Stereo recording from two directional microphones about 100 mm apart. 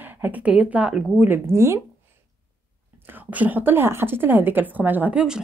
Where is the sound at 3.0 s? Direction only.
20° right (ahead or behind).